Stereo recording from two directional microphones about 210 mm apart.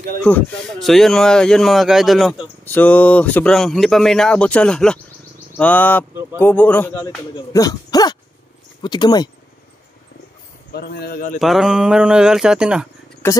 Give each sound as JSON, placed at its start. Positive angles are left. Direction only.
{"t": 0.2, "sound": "a man's voice", "side_deg": 5}
{"t": 10.7, "sound": "speech", "side_deg": 50}
{"t": 11.3, "sound": "speech", "side_deg": 0}